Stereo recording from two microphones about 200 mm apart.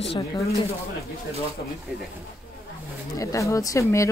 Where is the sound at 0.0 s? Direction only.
25° left (ahead or behind).